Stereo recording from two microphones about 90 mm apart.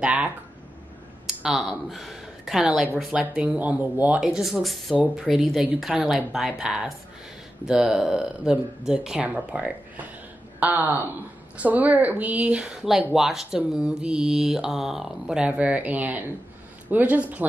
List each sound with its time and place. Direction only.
0.0 s speech: 15° right (ahead or behind)
1.2 s speech: 5° right (ahead or behind)
3.1 s speech: 15° right (ahead or behind)
4.2 s speech: 5° right (ahead or behind)
4.9 s speech: 15° right (ahead or behind)
5.2 s a man's voice: 5° right (ahead or behind)